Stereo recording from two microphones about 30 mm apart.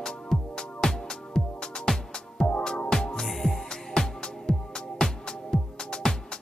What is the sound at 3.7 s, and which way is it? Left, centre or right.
Music, centre.